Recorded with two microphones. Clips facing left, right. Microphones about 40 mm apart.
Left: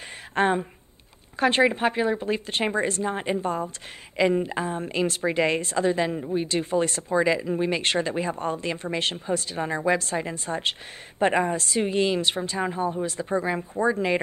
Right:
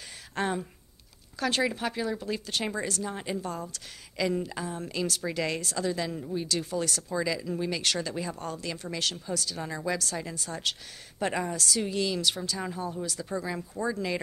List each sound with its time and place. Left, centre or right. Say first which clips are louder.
0.3 s a woman's voice: left 8 dB; left